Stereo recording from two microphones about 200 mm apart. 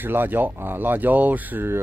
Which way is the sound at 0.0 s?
10° right (ahead or behind).